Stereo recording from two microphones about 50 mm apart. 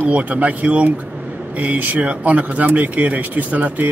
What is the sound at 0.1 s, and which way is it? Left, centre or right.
Speech, right.